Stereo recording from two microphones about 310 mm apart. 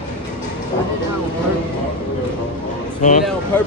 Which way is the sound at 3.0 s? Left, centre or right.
Left.